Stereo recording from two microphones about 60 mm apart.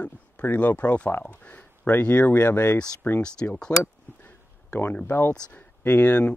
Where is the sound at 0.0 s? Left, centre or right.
Left.